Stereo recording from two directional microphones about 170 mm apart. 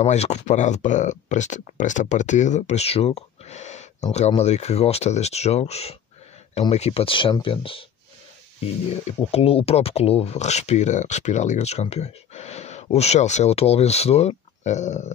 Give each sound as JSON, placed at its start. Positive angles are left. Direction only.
{"t": 0.0, "sound": "speech", "side_deg": 40}
{"t": 9.0, "sound": "speech", "side_deg": 35}